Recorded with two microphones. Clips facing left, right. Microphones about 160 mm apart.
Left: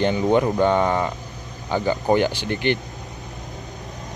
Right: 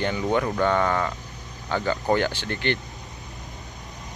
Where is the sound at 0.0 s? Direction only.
20° left (ahead or behind).